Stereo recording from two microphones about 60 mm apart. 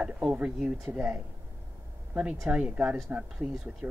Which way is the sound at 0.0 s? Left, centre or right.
Right.